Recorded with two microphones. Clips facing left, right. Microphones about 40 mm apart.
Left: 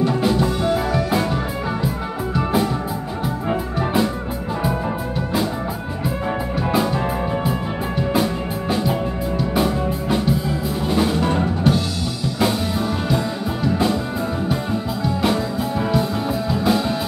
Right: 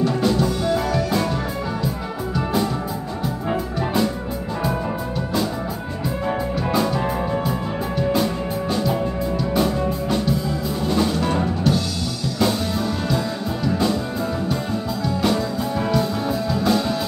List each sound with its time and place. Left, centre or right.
0.0 s music: centre
2.3 s music: centre
6.7 s music: centre
8.1 s music: centre
13.7 s music: centre
15.2 s music: centre